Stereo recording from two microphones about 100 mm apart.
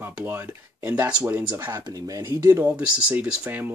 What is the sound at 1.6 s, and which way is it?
Speech, 35° right (ahead or behind).